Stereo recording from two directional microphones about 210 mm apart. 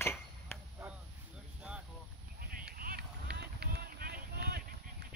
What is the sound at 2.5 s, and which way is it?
Run, 45° right (ahead or behind).